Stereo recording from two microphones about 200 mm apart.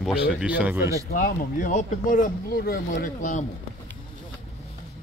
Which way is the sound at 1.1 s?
45° left (ahead or behind).